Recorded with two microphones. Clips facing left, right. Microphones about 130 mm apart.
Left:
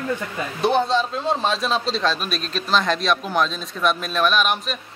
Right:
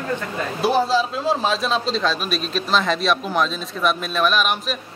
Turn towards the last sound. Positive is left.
turn(degrees=0)  # may be behind; listen again after turning